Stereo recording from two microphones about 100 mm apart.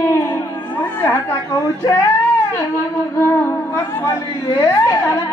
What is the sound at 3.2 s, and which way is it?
Music, 25° left (ahead or behind).